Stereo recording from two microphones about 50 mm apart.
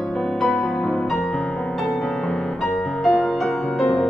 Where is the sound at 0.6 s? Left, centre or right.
Centre.